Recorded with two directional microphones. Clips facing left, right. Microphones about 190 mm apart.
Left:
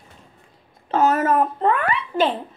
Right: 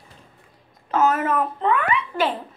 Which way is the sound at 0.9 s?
35° left (ahead or behind).